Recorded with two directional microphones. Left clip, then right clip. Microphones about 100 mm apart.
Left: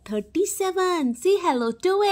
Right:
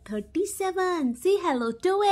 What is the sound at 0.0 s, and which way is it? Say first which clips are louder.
Speech: left 4 dB; 40° left (ahead or behind).